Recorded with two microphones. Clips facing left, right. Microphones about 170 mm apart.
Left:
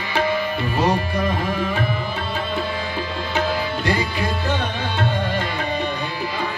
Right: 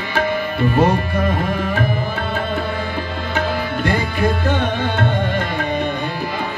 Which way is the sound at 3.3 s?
55° right (ahead or behind).